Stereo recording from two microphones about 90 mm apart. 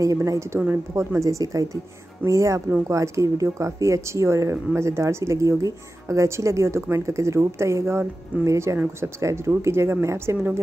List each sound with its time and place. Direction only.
0.0 s speech: 35° right (ahead or behind)